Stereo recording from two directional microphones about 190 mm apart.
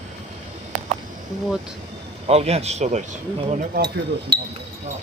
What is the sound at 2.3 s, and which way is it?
Speech, 35° right (ahead or behind).